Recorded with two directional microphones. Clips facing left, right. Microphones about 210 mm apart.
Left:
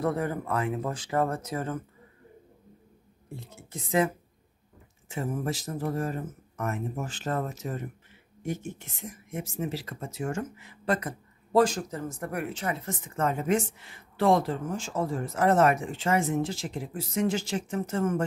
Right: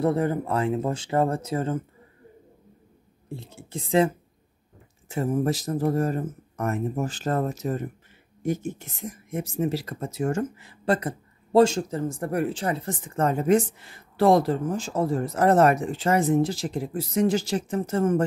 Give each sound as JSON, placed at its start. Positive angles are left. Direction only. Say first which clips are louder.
{"t": 0.0, "sound": "speech", "louder": "right 5 dB", "side_deg": -25}
{"t": 3.3, "sound": "speech", "louder": "right 5 dB", "side_deg": -30}